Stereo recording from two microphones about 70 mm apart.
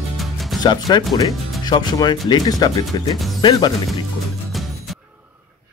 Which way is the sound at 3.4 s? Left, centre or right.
Left.